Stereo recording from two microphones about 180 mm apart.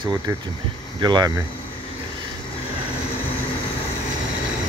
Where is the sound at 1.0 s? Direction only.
25° right (ahead or behind).